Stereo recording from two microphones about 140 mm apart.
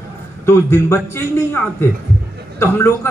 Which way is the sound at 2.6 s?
15° left (ahead or behind).